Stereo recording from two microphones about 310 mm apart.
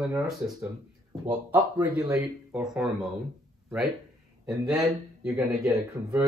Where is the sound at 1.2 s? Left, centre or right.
Centre.